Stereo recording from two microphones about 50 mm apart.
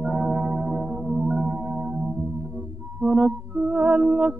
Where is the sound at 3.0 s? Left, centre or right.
Centre.